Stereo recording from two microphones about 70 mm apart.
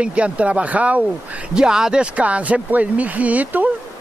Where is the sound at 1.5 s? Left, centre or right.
Centre.